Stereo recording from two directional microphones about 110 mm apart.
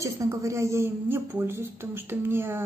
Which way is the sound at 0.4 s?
25° right (ahead or behind).